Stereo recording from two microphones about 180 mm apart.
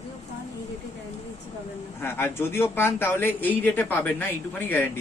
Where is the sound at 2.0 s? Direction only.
15° left (ahead or behind).